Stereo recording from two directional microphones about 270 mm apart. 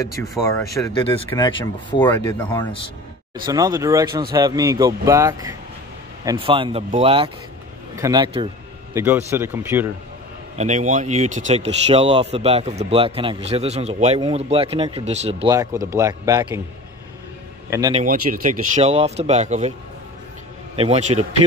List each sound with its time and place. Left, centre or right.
0.0 s speech: centre
3.4 s speech: centre
10.5 s speech: right
17.6 s a man's voice: centre
17.9 s speech: right
20.7 s speech: right